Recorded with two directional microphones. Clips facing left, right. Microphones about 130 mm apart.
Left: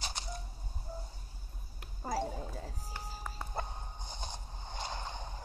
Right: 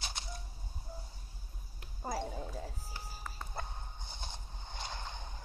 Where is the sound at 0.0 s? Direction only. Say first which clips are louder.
Left 3 dB; centre (ahead or behind).